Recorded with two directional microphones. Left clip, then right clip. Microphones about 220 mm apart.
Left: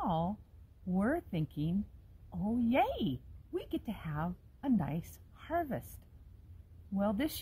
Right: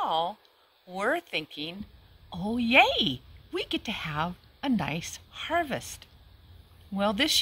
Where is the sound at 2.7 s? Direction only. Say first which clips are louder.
Right 12 dB; 5° right (ahead or behind).